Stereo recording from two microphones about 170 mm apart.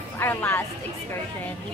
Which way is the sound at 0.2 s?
10° left (ahead or behind).